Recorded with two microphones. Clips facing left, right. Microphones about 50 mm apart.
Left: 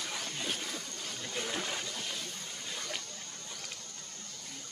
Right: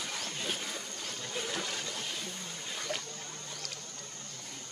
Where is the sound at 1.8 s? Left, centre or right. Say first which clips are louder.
Right 1 dB; centre.